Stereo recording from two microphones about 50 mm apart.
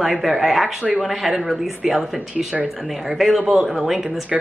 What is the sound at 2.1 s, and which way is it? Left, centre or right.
Speech, right.